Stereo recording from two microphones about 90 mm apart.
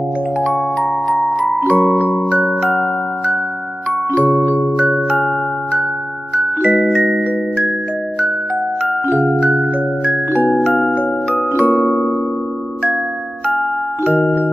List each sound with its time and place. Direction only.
0.4 s music: centre (ahead or behind)
2.0 s music: 15° left (ahead or behind)
4.1 s music: 20° right (ahead or behind)
5.1 s music: centre (ahead or behind)
9.4 s music: 5° right (ahead or behind)